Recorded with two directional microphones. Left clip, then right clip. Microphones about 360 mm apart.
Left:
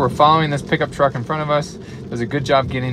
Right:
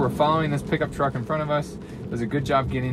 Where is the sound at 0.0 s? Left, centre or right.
Left.